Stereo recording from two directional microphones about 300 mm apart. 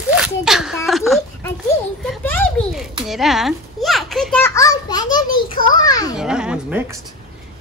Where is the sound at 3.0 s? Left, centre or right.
Centre.